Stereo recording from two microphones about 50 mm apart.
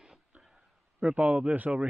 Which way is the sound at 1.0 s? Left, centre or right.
Right.